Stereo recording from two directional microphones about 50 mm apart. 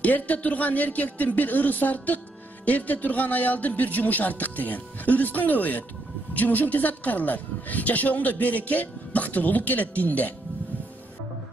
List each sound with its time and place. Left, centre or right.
0.0 s speech: left